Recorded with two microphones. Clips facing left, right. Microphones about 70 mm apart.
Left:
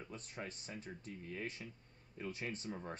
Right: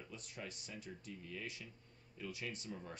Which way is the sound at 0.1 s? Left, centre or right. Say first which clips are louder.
Left 2 dB; left.